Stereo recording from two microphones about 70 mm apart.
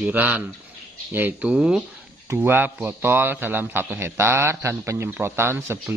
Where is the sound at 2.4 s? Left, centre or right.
Right.